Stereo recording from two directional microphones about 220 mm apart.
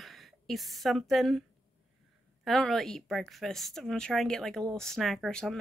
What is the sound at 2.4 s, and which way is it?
A woman's voice, centre (ahead or behind).